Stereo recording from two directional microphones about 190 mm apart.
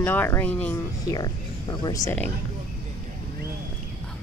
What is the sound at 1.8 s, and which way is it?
Speech, 15° left (ahead or behind).